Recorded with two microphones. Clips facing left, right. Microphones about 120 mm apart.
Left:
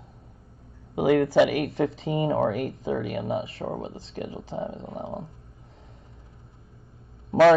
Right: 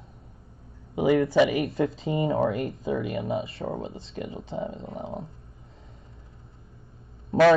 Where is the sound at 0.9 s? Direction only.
90° left.